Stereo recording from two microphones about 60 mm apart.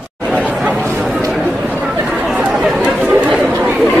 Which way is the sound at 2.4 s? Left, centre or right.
Centre.